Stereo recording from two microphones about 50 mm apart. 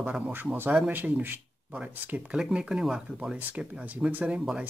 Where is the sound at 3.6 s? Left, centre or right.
Right.